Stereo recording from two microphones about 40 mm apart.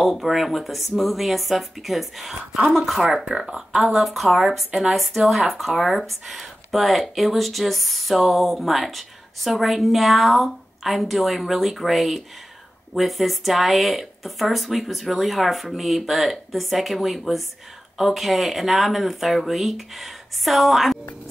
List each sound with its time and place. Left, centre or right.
0.0 s speech: centre
2.3 s speech: right
2.7 s speech: centre